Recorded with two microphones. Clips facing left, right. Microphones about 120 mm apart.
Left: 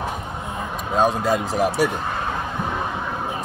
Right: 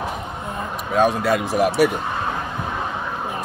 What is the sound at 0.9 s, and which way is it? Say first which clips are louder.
Speech: right 1 dB; 20° left (ahead or behind).